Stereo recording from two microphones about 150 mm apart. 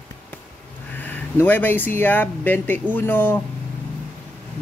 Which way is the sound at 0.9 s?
10° left (ahead or behind).